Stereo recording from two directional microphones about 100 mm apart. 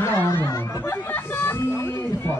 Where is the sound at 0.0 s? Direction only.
25° left (ahead or behind).